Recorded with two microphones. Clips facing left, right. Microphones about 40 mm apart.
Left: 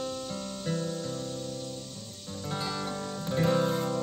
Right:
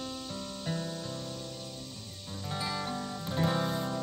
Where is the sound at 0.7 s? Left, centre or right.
Centre.